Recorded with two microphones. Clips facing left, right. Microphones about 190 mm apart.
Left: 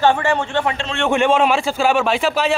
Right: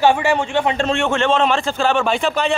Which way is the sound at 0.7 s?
50° right (ahead or behind).